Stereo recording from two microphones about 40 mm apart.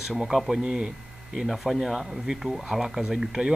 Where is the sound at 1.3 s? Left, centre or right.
Centre.